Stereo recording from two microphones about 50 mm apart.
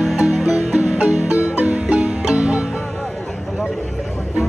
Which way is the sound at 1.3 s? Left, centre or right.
Right.